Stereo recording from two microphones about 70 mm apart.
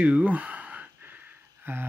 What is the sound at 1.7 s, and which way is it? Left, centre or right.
Speech, right.